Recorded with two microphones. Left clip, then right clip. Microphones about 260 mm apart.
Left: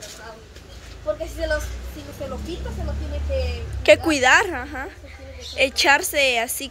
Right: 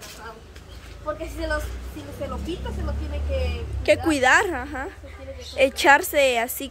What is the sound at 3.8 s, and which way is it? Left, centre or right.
A woman's voice, centre.